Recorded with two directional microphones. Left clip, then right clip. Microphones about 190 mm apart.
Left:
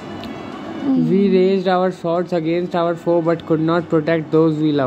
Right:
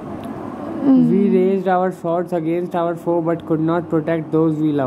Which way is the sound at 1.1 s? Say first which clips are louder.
Left 1 dB; 30° left (ahead or behind).